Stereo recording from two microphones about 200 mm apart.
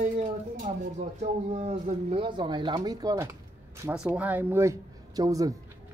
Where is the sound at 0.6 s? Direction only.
35° right (ahead or behind).